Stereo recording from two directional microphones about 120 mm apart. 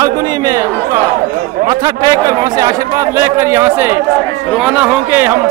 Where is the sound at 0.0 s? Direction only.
35° right (ahead or behind).